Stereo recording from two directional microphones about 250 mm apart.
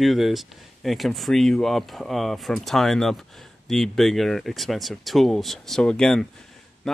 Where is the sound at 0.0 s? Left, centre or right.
Centre.